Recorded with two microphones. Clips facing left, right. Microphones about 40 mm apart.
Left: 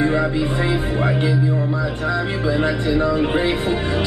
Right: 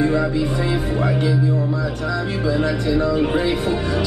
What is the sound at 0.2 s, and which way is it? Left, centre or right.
Music, left.